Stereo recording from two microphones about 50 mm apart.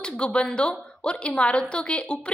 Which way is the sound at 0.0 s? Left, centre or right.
Left.